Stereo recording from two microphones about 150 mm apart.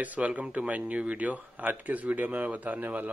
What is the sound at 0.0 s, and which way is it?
Speech, 10° right (ahead or behind).